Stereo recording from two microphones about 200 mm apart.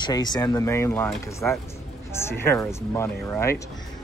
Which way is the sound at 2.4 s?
10° left (ahead or behind).